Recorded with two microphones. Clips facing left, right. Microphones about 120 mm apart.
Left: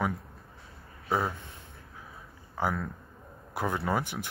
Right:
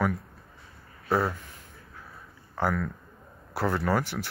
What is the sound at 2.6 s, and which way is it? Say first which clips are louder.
A man's voice: right 3 dB; 15° left (ahead or behind).